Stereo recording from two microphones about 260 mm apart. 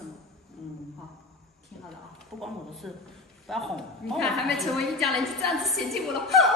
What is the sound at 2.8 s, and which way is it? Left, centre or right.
Speech, centre.